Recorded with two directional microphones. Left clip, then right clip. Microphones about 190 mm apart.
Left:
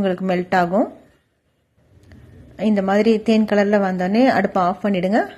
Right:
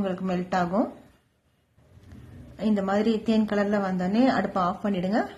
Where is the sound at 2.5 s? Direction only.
20° left (ahead or behind).